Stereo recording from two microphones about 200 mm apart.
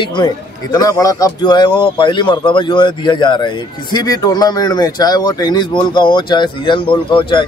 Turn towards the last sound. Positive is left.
turn(degrees=25)  # may be behind; listen again after turning